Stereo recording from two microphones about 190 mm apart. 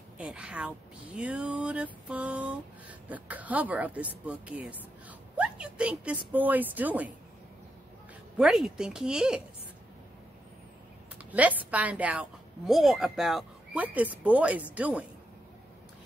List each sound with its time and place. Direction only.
0.2 s a woman's voice: 5° right (ahead or behind)
8.4 s speech: centre (ahead or behind)
11.3 s speech: 5° right (ahead or behind)